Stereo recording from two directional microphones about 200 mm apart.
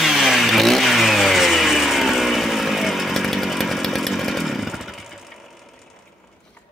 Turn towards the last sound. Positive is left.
turn(degrees=0)  # may be behind; listen again after turning